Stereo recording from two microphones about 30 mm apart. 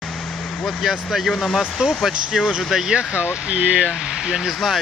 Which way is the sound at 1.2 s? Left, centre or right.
Centre.